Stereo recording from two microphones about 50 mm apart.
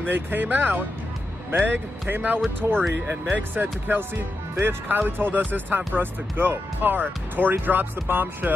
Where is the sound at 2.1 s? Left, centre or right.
Right.